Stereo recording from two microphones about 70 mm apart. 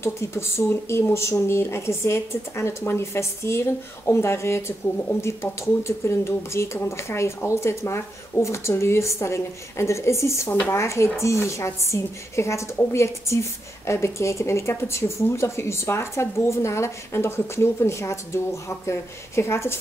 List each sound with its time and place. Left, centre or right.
0.0 s a woman's voice: left